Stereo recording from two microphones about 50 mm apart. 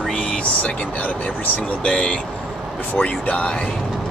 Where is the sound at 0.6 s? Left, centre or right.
Left.